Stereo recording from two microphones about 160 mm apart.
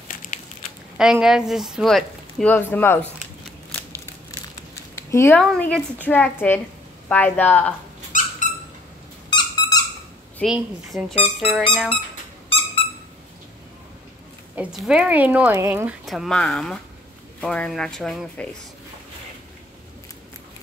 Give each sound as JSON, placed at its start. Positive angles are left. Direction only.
{"t": 0.1, "sound": "crushing", "side_deg": 55}
{"t": 0.9, "sound": "speech", "side_deg": -5}
{"t": 4.9, "sound": "a sound", "side_deg": 15}
{"t": 5.4, "sound": "speech", "side_deg": 5}
{"t": 9.3, "sound": "a sound", "side_deg": 25}
{"t": 10.4, "sound": "speech", "side_deg": -5}
{"t": 12.8, "sound": "a sound", "side_deg": 35}
{"t": 14.5, "sound": "speech", "side_deg": -5}
{"t": 16.1, "sound": "speech", "side_deg": 0}